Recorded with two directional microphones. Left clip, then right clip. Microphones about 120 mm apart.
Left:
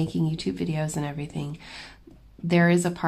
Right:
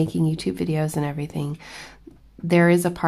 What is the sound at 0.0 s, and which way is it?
Speech, 35° right (ahead or behind).